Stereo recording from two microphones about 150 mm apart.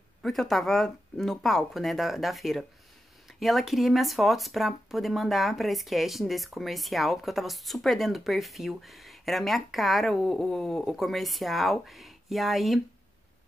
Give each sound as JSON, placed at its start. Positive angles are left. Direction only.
{"t": 0.2, "sound": "speech", "side_deg": 0}